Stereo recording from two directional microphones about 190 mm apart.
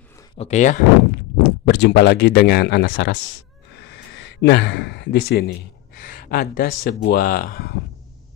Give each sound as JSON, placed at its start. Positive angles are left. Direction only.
{"t": 0.4, "sound": "speech", "side_deg": 40}
{"t": 1.4, "sound": "speech", "side_deg": 65}
{"t": 4.2, "sound": "speech", "side_deg": 65}